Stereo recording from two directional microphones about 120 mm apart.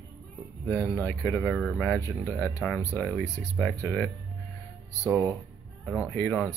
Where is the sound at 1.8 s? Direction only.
15° left (ahead or behind).